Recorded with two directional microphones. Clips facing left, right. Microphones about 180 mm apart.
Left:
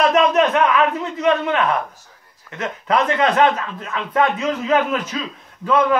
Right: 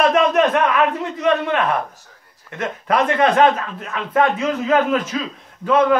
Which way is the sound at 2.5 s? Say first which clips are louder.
Even; 40° right (ahead or behind).